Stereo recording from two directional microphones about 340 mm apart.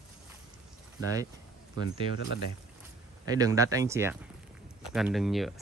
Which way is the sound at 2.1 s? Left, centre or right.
Left.